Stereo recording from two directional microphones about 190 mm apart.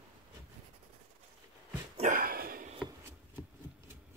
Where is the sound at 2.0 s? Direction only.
45° right (ahead or behind).